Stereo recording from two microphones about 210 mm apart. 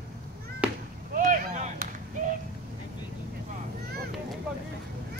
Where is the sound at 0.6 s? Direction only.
5° right (ahead or behind).